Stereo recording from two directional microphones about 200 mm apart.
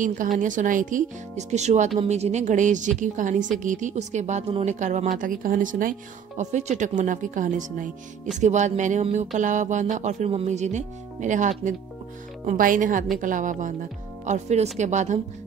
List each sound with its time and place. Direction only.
0.4 s speech: 40° right (ahead or behind)